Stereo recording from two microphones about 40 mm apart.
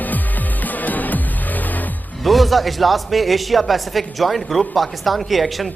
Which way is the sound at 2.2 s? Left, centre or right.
Centre.